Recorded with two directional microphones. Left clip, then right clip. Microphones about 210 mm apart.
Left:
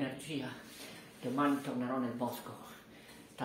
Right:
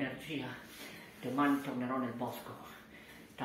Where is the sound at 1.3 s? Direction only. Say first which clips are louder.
Right 1 dB; 15° left (ahead or behind).